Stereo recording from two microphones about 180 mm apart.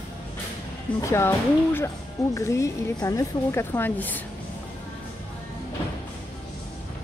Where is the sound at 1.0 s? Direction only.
15° left (ahead or behind).